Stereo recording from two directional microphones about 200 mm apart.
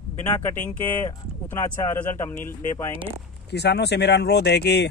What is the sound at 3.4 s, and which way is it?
Speech, 55° left (ahead or behind).